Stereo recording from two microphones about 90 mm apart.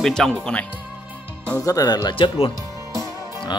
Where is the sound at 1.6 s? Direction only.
40° left (ahead or behind).